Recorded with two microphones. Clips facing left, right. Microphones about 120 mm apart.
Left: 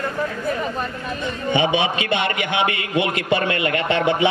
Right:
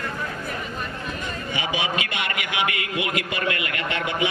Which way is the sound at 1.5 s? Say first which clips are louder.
Left 7 dB; 25° left (ahead or behind).